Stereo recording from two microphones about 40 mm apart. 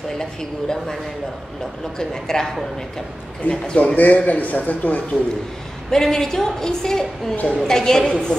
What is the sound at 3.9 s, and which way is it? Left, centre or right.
A man's voice, left.